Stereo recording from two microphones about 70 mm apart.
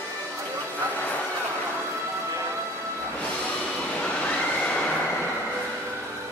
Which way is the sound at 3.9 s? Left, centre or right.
Centre.